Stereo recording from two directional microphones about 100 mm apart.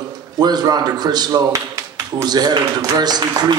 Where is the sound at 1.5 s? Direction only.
30° right (ahead or behind).